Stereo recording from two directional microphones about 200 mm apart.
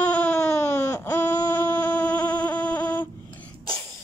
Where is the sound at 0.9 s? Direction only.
10° left (ahead or behind).